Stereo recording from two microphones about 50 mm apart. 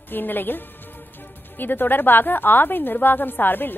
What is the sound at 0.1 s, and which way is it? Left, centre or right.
A woman's voice, left.